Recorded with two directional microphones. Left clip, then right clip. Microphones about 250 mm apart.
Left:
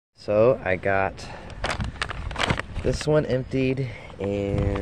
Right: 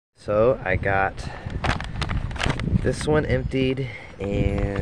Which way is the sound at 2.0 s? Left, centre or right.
Centre.